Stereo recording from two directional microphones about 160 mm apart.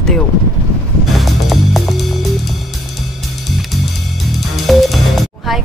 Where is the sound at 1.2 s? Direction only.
Centre (ahead or behind).